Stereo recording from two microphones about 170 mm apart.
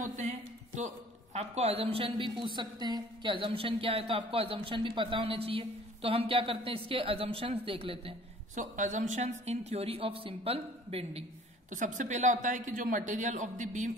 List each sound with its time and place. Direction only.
0.0 s a woman's voice: 45° right (ahead or behind)
8.5 s a woman's voice: 45° right (ahead or behind)
11.7 s a woman's voice: 45° right (ahead or behind)